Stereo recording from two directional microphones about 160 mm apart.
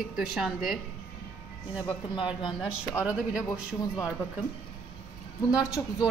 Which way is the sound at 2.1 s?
30° left (ahead or behind).